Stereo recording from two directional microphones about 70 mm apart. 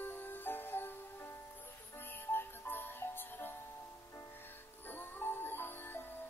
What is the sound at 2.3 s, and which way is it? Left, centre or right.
Music, left.